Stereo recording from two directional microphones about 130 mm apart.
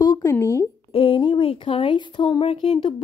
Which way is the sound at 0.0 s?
30° left (ahead or behind).